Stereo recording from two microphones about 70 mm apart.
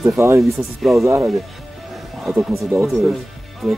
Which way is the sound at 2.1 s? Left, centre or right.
Centre.